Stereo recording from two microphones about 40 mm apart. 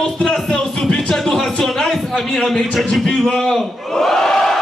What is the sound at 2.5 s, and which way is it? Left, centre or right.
Crowd, centre.